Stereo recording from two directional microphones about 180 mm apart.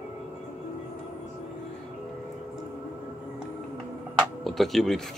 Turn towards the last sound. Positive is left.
turn(degrees=0)  # may be behind; listen again after turning